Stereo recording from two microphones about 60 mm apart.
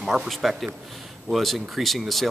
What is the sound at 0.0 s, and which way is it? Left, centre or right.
Speech, centre.